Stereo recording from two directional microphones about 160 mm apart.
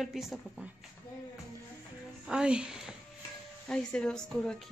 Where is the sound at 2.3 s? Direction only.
5° right (ahead or behind).